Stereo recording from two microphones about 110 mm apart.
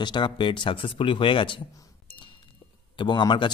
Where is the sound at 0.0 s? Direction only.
45° left (ahead or behind).